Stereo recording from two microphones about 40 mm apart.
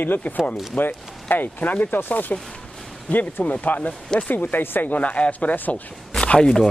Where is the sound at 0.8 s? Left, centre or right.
Left.